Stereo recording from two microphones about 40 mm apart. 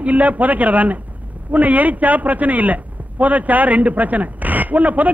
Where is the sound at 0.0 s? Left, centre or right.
Right.